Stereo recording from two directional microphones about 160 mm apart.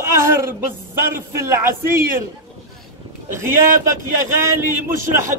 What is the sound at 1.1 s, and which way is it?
Speech, 15° right (ahead or behind).